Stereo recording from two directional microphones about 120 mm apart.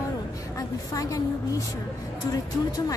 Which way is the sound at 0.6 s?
30° left (ahead or behind).